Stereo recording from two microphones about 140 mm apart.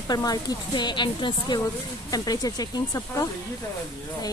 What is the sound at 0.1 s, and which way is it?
A woman's voice, 30° left (ahead or behind).